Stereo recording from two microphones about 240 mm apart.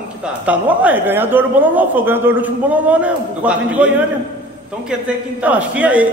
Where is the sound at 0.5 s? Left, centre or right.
Centre.